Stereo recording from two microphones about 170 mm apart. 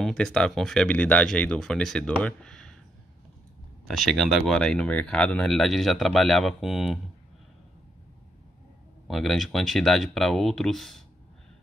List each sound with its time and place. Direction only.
0.0 s speech: 5° left (ahead or behind)
3.8 s speech: centre (ahead or behind)
9.0 s speech: centre (ahead or behind)